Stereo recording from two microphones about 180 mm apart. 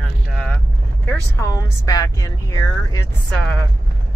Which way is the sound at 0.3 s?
5° left (ahead or behind).